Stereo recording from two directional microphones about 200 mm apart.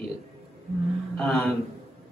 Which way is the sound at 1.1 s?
5° left (ahead or behind).